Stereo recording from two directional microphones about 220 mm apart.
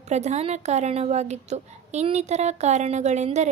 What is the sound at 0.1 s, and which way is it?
A woman's voice, 30° right (ahead or behind).